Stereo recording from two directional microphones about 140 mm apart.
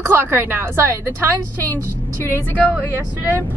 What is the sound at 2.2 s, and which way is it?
Speech, 15° left (ahead or behind).